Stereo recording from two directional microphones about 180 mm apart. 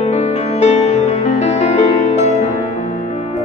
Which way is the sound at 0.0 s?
35° left (ahead or behind).